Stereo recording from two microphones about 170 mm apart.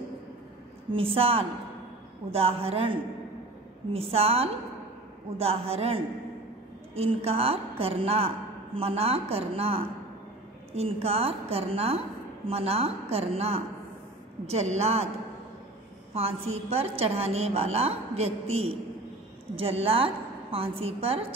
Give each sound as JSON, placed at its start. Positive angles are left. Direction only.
{"t": 0.9, "sound": "a woman's voice", "side_deg": -35}
{"t": 16.1, "sound": "a woman's voice", "side_deg": -35}